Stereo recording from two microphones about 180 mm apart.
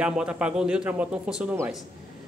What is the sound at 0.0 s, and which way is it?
Speech, 5° right (ahead or behind).